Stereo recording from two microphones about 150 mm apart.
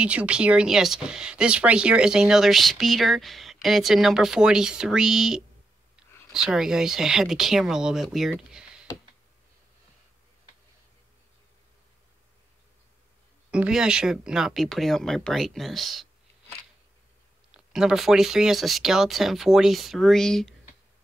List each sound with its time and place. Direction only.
0.0 s speech: 10° right (ahead or behind)
13.5 s speech: 5° right (ahead or behind)
17.5 s speech: 5° right (ahead or behind)